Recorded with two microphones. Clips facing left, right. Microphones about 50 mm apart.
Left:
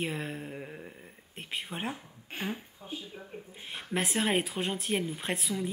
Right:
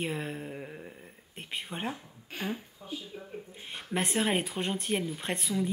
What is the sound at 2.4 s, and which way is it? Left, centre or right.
Speech, left.